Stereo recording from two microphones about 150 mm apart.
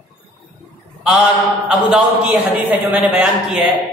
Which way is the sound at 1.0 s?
5° right (ahead or behind).